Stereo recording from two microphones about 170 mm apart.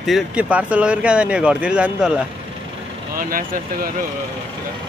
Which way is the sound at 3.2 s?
55° right (ahead or behind).